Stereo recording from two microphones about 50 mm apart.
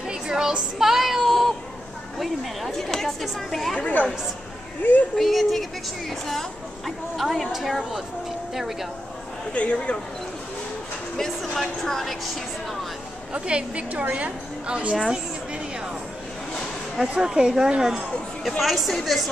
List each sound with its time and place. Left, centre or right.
0.1 s child singing: centre
2.1 s speech: centre
5.1 s speech: centre
9.5 s speech: left
11.1 s speech: centre
13.3 s a woman's voice: right
17.0 s speech: centre
18.6 s speech: centre